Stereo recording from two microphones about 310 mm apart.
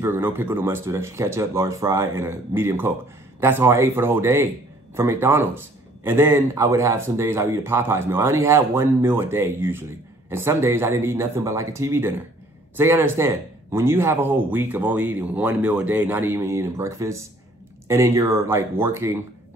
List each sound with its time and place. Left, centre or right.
0.0 s speech: centre